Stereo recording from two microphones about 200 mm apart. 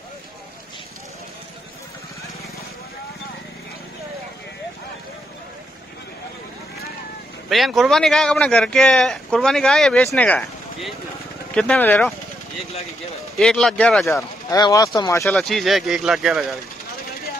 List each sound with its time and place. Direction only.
7.4 s speech: centre (ahead or behind)
10.0 s a sound: 10° left (ahead or behind)
11.5 s speech: 5° left (ahead or behind)
13.4 s speech: centre (ahead or behind)
14.1 s speech: 15° left (ahead or behind)
15.3 s speech: centre (ahead or behind)